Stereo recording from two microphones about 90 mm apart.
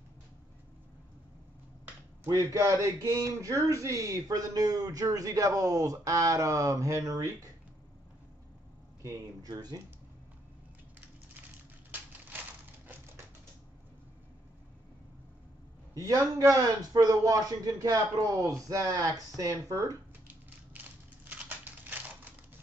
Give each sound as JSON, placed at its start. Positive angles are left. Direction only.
{"t": 2.2, "sound": "speech", "side_deg": -30}
{"t": 9.0, "sound": "speech", "side_deg": -45}
{"t": 15.9, "sound": "speech", "side_deg": -40}
{"t": 20.4, "sound": "a sound", "side_deg": -20}